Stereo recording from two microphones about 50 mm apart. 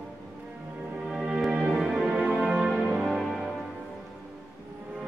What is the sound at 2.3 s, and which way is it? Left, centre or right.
Music, right.